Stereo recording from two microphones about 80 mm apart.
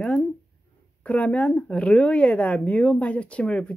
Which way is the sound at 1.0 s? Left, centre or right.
Centre.